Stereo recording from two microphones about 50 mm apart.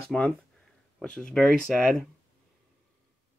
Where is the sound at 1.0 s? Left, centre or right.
Centre.